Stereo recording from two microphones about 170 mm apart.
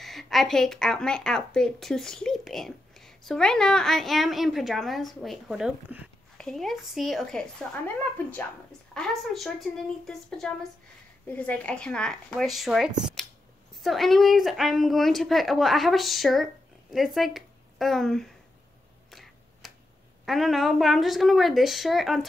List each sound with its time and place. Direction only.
0.0 s a woman's voice: centre (ahead or behind)
19.0 s finger snapping: centre (ahead or behind)
20.2 s a woman's voice: centre (ahead or behind)